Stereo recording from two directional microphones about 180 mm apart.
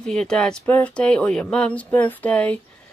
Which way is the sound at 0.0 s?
5° left (ahead or behind).